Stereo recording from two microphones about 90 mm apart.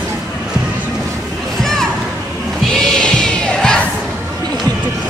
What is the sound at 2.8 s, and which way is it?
Music, 5° left (ahead or behind).